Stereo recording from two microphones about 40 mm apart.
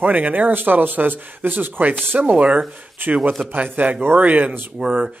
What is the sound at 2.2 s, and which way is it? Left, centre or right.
Speech, right.